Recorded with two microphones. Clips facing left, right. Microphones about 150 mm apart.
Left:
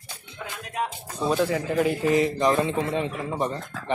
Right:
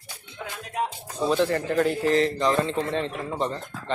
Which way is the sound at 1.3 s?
5° left (ahead or behind).